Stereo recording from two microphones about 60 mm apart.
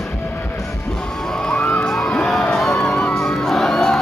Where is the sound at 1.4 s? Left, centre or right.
Centre.